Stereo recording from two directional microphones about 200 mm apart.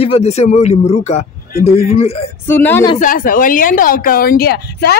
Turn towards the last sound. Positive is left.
turn(degrees=55)  # may be behind; listen again after turning